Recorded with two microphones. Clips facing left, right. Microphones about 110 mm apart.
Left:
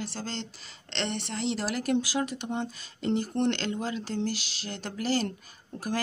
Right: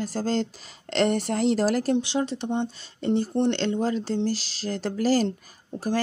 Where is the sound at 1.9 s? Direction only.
25° right (ahead or behind).